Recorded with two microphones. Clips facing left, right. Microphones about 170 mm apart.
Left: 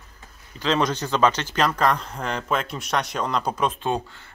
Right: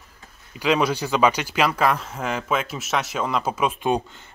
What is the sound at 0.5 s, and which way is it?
Speech, 10° right (ahead or behind).